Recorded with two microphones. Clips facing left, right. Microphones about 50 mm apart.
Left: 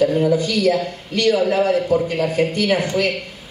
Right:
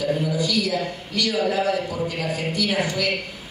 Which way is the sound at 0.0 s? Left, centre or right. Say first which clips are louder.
Left 7 dB; left.